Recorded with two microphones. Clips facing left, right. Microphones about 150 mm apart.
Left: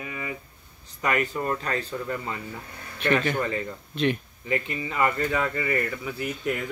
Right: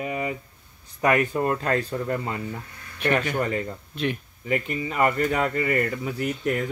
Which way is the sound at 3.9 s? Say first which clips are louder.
Left 3 dB; 5° right (ahead or behind).